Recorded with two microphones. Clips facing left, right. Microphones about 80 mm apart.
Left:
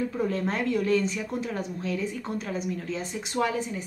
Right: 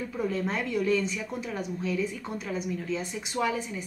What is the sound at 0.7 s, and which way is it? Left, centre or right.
Speech, left.